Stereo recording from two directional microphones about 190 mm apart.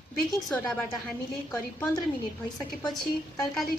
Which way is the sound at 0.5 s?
5° left (ahead or behind).